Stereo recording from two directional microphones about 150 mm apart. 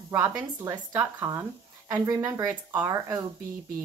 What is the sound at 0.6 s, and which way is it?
A woman's voice, 20° right (ahead or behind).